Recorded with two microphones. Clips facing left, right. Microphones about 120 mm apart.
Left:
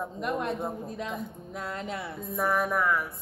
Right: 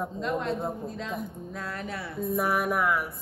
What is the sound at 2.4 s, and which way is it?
Speech, 10° right (ahead or behind).